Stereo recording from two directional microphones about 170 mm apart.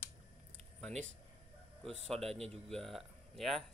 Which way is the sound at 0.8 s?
5° left (ahead or behind).